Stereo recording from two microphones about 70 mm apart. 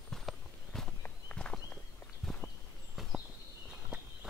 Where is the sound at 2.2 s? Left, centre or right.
Centre.